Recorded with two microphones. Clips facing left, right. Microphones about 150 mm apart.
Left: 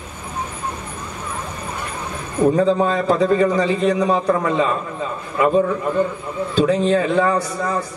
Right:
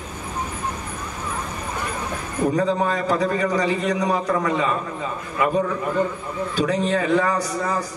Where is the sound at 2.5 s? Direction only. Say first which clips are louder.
Left 4 dB; 25° left (ahead or behind).